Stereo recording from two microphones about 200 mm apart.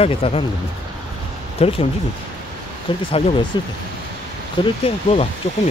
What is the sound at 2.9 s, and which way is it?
Speech, 25° left (ahead or behind).